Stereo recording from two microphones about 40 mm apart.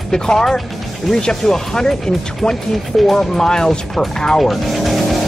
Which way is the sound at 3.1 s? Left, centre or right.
Centre.